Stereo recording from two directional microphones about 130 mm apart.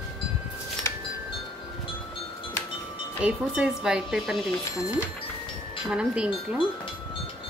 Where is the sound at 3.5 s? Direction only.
5° right (ahead or behind).